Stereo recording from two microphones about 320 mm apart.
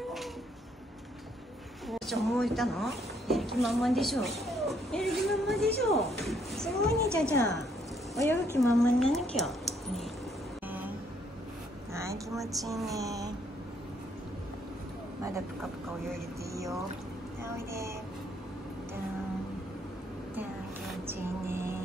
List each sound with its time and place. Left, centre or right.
1.9 s a woman's voice: centre
11.9 s speech: centre
12.9 s speech: centre
16.5 s speech: centre
21.1 s music: centre